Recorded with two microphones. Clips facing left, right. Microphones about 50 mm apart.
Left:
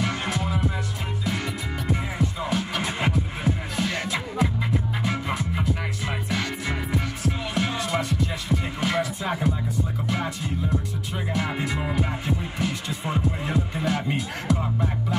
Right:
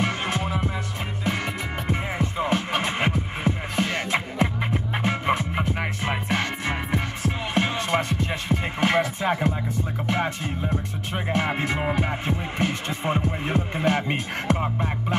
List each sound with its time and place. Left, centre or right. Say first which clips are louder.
0.0 s music: right 1 dB; right
1.9 s music: even; right